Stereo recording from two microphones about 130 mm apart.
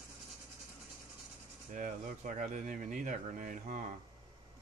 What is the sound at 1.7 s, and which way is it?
Speech, 75° right (ahead or behind).